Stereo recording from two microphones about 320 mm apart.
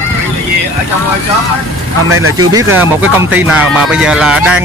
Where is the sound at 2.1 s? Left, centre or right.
Right.